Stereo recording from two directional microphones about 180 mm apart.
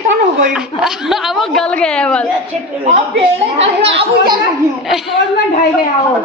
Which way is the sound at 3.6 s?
30° right (ahead or behind).